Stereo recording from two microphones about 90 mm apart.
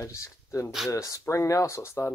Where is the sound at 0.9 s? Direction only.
35° left (ahead or behind).